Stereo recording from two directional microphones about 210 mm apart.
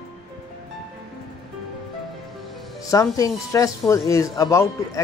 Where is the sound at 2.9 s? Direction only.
15° left (ahead or behind).